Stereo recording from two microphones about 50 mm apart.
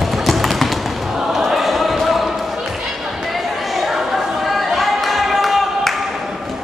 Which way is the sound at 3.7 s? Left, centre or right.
Centre.